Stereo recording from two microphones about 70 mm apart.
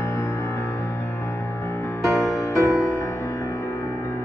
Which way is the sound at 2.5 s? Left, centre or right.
Left.